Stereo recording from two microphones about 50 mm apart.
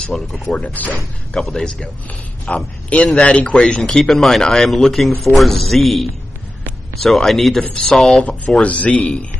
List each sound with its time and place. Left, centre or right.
0.1 s speech: centre
0.6 s speech: left
1.3 s speech: centre
2.5 s a man's voice: left
3.5 s speech: centre
4.0 s speech: centre
8.6 s a man's voice: left